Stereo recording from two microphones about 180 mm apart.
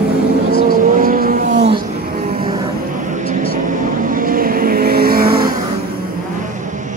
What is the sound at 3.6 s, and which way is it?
Vehicle, 45° right (ahead or behind).